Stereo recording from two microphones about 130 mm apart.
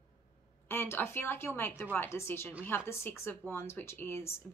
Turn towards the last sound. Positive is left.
turn(degrees=20)  # may be behind; listen again after turning